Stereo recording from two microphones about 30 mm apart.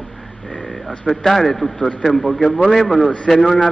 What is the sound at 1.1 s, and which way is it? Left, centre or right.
A man's voice, centre.